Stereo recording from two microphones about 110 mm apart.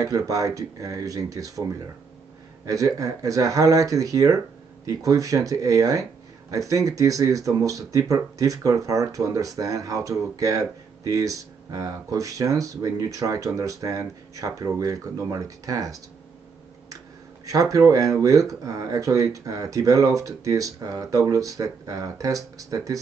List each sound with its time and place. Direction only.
0.0 s speech: 30° right (ahead or behind)
17.5 s speech: 30° right (ahead or behind)